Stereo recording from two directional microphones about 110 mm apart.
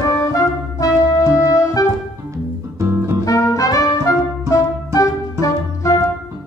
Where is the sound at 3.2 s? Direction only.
30° left (ahead or behind).